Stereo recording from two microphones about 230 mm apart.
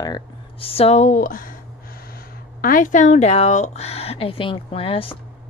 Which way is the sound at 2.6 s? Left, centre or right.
Left.